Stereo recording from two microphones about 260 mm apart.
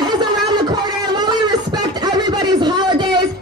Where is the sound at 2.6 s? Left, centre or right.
Centre.